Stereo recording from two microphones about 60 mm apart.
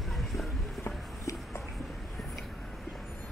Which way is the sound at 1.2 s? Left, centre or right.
Left.